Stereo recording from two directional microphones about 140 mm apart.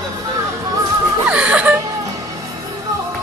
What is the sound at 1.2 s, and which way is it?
Wheeze, 10° right (ahead or behind).